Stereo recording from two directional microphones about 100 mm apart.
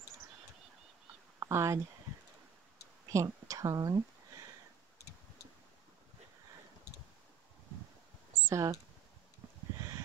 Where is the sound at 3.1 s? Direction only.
35° right (ahead or behind).